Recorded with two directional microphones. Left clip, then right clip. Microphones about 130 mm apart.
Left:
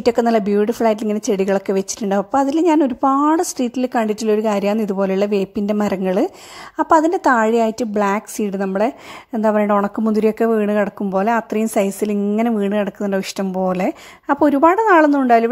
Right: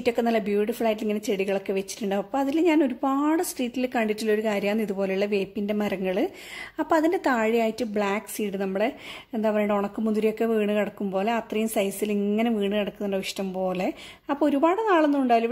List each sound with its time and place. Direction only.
0.0 s speech: 55° left (ahead or behind)